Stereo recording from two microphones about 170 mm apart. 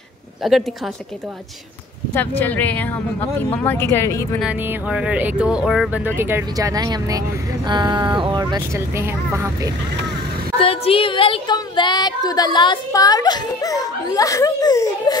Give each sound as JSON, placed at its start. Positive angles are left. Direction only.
{"t": 0.4, "sound": "a woman's voice", "side_deg": 0}
{"t": 2.1, "sound": "speech", "side_deg": 10}
{"t": 4.4, "sound": "speech", "side_deg": -5}
{"t": 8.5, "sound": "speech", "side_deg": -15}
{"t": 10.6, "sound": "a woman's voice", "side_deg": 35}